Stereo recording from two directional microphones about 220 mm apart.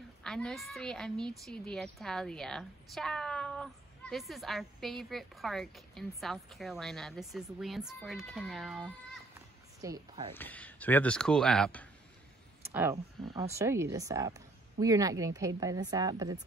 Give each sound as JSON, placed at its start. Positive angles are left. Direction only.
{"t": 0.2, "sound": "a woman's voice", "side_deg": 5}
{"t": 9.8, "sound": "speech", "side_deg": -15}
{"t": 10.3, "sound": "speech", "side_deg": 10}
{"t": 13.3, "sound": "speech", "side_deg": -15}